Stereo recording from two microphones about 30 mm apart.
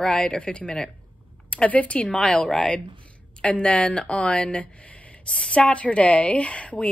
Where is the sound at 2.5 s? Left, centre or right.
Left.